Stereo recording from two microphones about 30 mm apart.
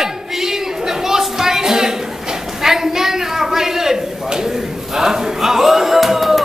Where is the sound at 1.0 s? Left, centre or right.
Centre.